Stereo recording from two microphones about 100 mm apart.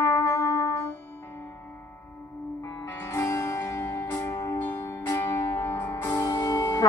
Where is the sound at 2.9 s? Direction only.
25° left (ahead or behind).